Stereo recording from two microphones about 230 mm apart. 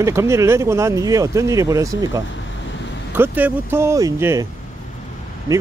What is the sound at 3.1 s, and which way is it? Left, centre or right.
Speech, centre.